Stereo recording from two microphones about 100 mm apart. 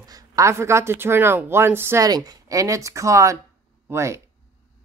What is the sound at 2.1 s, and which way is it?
Speech, 40° right (ahead or behind).